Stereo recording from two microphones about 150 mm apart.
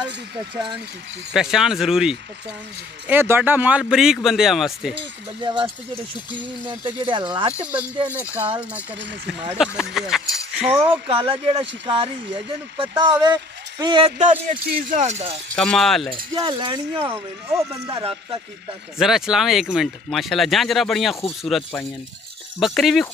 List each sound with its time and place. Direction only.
1.3 s speech: 5° right (ahead or behind)
3.1 s speech: 15° right (ahead or behind)
5.4 s speech: 30° right (ahead or behind)
6.7 s speech: 35° right (ahead or behind)
7.5 s speech: 10° right (ahead or behind)
9.6 s speech: 5° right (ahead or behind)
10.9 s speech: 35° right (ahead or behind)
13.2 s a man's voice: 30° right (ahead or behind)
14.1 s speech: 55° right (ahead or behind)
15.5 s speech: 5° left (ahead or behind)
16.3 s speech: 30° right (ahead or behind)
17.0 s speech: 15° right (ahead or behind)
18.9 s speech: centre (ahead or behind)